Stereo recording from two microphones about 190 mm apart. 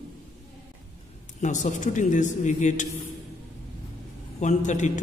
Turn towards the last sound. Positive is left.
turn(degrees=40)  # may be behind; listen again after turning